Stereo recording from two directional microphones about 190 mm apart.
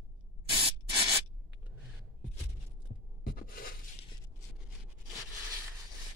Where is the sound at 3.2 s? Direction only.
50° left (ahead or behind).